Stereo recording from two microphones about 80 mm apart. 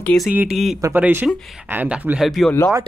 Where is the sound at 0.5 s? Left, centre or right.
Centre.